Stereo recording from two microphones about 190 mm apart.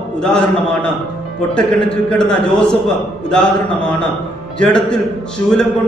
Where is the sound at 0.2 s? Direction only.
5° left (ahead or behind).